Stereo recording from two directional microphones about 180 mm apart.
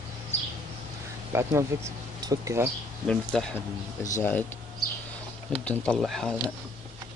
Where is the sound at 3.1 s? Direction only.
5° left (ahead or behind).